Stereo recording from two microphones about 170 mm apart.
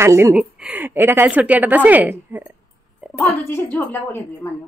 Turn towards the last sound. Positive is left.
turn(degrees=10)  # may be behind; listen again after turning